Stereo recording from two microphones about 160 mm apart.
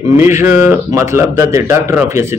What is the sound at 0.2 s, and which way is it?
A man's voice, 15° right (ahead or behind).